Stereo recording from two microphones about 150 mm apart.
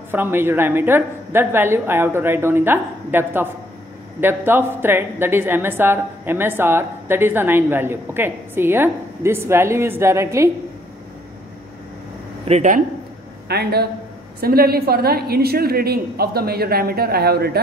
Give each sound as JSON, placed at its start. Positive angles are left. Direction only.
{"t": 0.1, "sound": "a woman's voice", "side_deg": -15}
{"t": 12.4, "sound": "speech", "side_deg": -45}
{"t": 13.5, "sound": "a woman's voice", "side_deg": -90}